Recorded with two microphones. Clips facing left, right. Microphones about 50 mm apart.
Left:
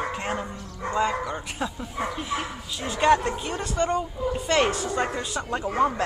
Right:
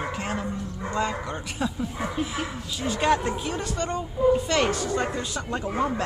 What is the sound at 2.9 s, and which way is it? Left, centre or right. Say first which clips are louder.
Speech: left 3 dB; centre.